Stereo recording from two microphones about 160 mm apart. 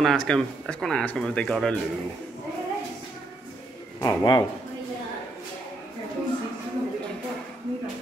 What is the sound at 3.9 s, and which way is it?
Speech, 25° left (ahead or behind).